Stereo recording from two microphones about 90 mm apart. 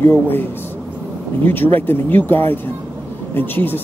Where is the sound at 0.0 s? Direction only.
25° left (ahead or behind).